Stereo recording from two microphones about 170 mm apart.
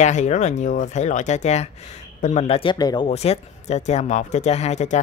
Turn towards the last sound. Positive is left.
turn(degrees=40)  # may be behind; listen again after turning